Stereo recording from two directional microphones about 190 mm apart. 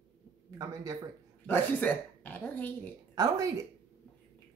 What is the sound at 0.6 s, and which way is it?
Speech, 20° right (ahead or behind).